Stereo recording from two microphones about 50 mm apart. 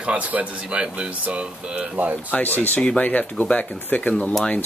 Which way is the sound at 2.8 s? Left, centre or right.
Centre.